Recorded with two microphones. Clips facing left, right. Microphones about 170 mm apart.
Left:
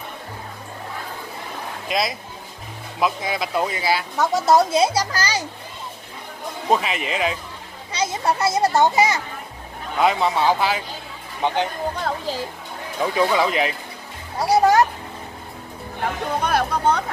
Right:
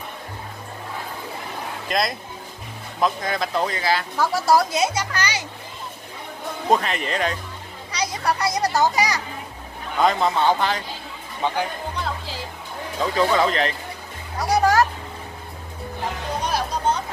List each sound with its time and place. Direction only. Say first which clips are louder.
1.9 s speech: even; centre (ahead or behind)
4.2 s speech: left 2 dB; 25° left (ahead or behind)
6.7 s speech: even; 5° left (ahead or behind)
7.9 s speech: left 2 dB; 25° left (ahead or behind)
9.9 s speech: even; 5° left (ahead or behind)
11.4 s speech: left 2 dB; 20° left (ahead or behind)
12.0 s music: left 4 dB; 45° left (ahead or behind)
13.0 s speech: even; 10° left (ahead or behind)
14.5 s children playing: left 2 dB; 25° left (ahead or behind)
16.4 s music: left 3 dB; 60° left (ahead or behind)